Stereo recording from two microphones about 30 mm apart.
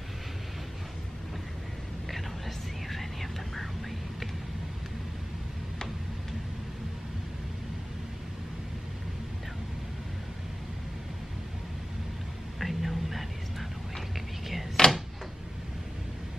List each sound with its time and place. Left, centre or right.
2.9 s whispering: centre
12.5 s whispering: centre
14.8 s a sound: centre